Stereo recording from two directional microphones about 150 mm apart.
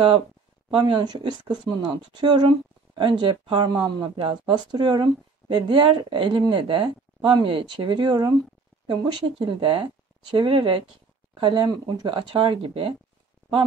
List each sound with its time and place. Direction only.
0.7 s a woman's voice: 35° right (ahead or behind)